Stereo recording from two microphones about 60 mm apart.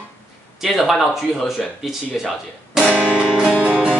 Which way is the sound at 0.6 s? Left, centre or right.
Centre.